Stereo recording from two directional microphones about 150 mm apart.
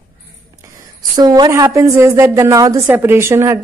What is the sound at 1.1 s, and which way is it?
A woman's voice, 30° right (ahead or behind).